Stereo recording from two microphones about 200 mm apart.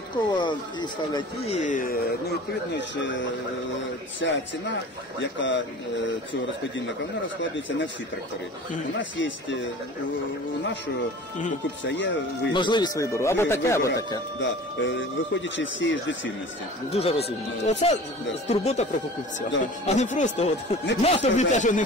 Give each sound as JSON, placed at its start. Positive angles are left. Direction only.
{"t": 0.4, "sound": "speech", "side_deg": 20}
{"t": 2.7, "sound": "speech", "side_deg": 65}
{"t": 8.9, "sound": "speech", "side_deg": 70}
{"t": 11.8, "sound": "speech", "side_deg": 65}
{"t": 12.5, "sound": "speech", "side_deg": 25}
{"t": 14.4, "sound": "speech", "side_deg": 70}
{"t": 16.9, "sound": "speech", "side_deg": 30}